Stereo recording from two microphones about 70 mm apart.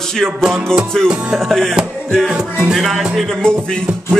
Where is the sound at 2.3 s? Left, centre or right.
Centre.